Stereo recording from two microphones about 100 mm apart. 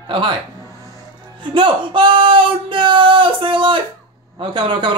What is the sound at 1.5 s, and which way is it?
Speech, 55° right (ahead or behind).